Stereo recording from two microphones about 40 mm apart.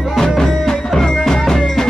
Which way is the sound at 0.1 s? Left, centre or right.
Centre.